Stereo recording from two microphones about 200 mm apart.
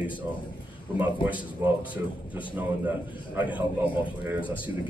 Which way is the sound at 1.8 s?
25° left (ahead or behind).